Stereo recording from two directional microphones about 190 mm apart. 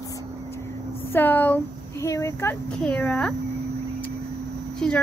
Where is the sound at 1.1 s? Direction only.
10° left (ahead or behind).